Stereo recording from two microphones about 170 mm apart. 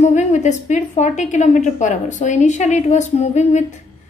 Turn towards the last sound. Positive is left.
turn(degrees=40)  # may be behind; listen again after turning